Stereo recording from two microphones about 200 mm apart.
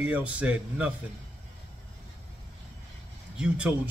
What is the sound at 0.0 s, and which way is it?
Speech, 5° right (ahead or behind).